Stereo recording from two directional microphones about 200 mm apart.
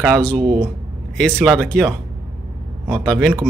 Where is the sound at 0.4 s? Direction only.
20° right (ahead or behind).